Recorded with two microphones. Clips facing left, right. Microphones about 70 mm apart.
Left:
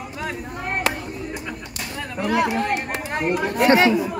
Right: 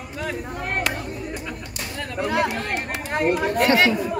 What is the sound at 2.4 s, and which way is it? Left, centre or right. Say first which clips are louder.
Speech: left 4 dB; centre.